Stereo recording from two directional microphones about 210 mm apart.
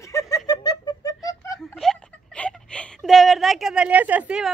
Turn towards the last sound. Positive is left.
turn(degrees=-5)  # may be behind; listen again after turning